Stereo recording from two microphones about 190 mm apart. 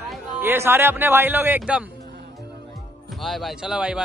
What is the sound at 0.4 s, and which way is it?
A man's voice, 10° right (ahead or behind).